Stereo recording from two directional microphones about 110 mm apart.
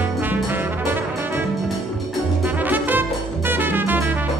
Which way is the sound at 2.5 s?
15° right (ahead or behind).